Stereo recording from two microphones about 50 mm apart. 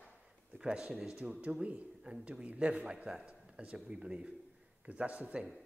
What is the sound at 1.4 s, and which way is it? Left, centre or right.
A man's voice, right.